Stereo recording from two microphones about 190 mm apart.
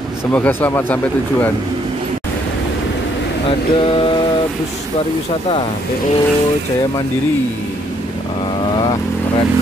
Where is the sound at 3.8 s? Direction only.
25° left (ahead or behind).